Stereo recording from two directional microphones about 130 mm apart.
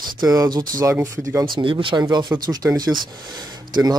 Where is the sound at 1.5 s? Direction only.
40° right (ahead or behind).